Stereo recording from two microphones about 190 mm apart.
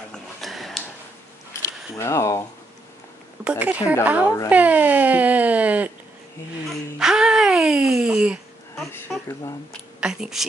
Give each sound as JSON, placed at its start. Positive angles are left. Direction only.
{"t": 0.1, "sound": "a sound", "side_deg": 0}
{"t": 2.0, "sound": "speech", "side_deg": 15}
{"t": 3.4, "sound": "speech", "side_deg": -5}
{"t": 6.7, "sound": "music", "side_deg": -5}
{"t": 9.7, "sound": "speech", "side_deg": -5}